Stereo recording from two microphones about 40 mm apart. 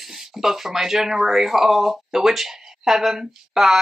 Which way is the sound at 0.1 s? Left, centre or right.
Centre.